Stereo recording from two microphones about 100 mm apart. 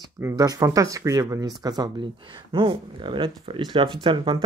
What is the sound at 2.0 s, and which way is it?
Speech, 60° right (ahead or behind).